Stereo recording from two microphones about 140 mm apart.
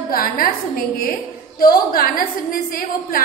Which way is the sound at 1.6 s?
90° left.